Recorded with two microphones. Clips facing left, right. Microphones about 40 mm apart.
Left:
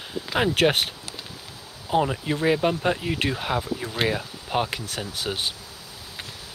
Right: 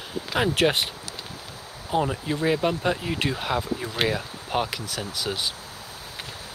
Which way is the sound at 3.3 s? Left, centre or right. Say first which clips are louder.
Even; centre.